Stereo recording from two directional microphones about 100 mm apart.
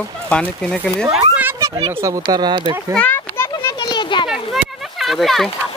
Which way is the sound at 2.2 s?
50° right (ahead or behind).